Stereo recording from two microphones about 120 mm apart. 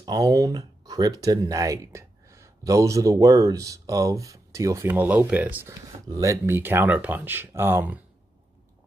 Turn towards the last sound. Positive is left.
turn(degrees=-20)  # may be behind; listen again after turning